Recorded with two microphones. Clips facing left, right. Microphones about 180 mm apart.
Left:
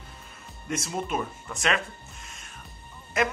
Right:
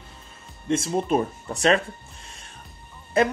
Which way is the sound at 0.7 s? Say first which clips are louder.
Right 8 dB; 30° right (ahead or behind).